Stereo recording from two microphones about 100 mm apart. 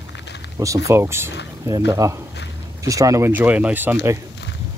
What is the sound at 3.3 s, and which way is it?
Speech, 15° right (ahead or behind).